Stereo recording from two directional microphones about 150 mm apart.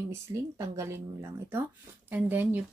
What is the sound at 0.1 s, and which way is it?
Speech, 20° right (ahead or behind).